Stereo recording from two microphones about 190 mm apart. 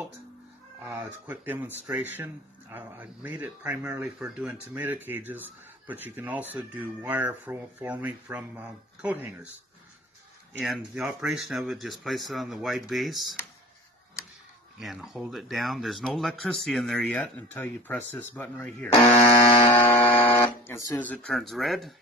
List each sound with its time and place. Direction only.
0.8 s speech: 10° right (ahead or behind)
10.6 s speech: centre (ahead or behind)
14.8 s speech: centre (ahead or behind)
18.9 s speech: 35° left (ahead or behind)
19.7 s speech: 15° left (ahead or behind)